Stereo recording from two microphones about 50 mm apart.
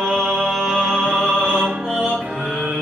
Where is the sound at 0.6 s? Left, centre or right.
Centre.